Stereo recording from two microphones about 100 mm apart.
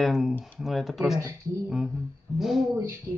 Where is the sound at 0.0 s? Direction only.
5° right (ahead or behind).